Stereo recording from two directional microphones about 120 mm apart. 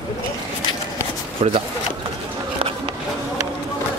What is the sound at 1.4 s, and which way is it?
Speech, 75° right (ahead or behind).